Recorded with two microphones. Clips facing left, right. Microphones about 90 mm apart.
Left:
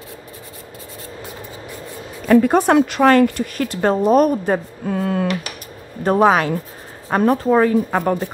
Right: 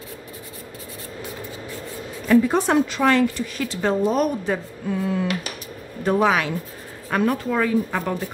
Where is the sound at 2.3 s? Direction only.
55° left (ahead or behind).